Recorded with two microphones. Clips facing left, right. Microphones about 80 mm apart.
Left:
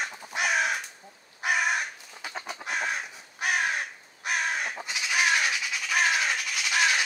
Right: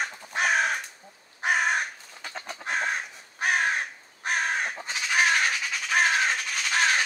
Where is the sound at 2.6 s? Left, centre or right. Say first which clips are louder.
Right 3 dB; right.